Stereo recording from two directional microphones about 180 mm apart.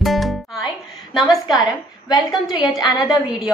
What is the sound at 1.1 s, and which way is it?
Speech, centre (ahead or behind).